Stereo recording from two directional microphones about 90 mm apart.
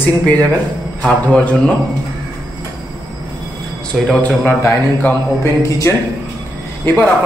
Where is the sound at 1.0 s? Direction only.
15° left (ahead or behind).